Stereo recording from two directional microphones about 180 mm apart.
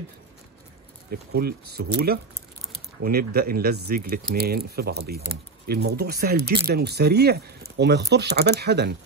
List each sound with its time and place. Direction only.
1.3 s speech: 60° right (ahead or behind)